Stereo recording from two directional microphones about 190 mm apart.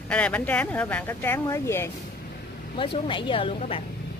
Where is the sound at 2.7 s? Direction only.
30° left (ahead or behind).